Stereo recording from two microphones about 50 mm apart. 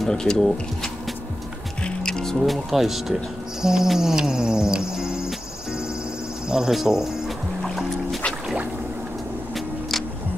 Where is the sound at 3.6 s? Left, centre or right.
Centre.